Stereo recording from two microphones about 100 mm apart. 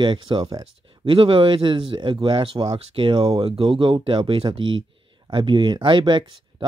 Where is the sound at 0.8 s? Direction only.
60° right (ahead or behind).